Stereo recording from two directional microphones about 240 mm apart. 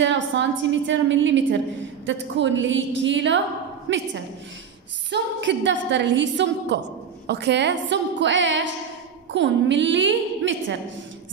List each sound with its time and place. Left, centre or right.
0.0 s a woman's voice: right
5.1 s a woman's voice: right